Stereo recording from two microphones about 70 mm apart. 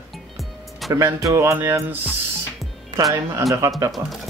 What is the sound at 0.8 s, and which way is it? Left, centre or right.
Music, centre.